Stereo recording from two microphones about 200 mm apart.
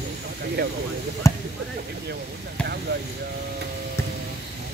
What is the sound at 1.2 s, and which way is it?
Speech, 15° left (ahead or behind).